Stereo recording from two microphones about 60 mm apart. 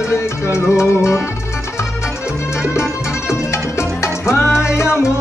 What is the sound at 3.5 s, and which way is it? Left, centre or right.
Music, left.